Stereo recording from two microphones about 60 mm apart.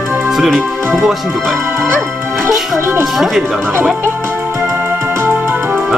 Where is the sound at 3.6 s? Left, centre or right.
Right.